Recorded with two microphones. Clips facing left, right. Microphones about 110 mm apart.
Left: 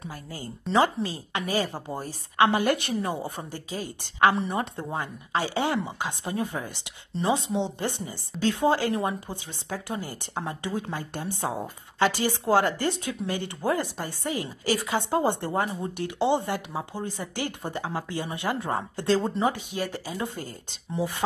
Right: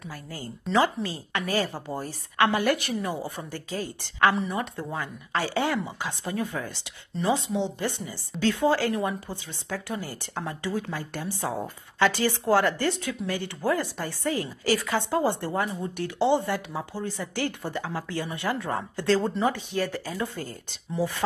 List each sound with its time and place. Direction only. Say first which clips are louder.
0.1 s a woman's voice: even; 15° left (ahead or behind)